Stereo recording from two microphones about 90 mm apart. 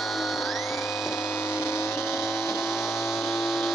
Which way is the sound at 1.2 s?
30° left (ahead or behind).